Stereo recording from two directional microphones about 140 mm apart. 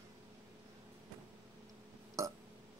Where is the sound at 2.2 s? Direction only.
20° right (ahead or behind).